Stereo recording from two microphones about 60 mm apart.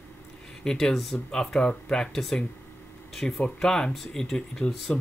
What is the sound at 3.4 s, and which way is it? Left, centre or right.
Speech, centre.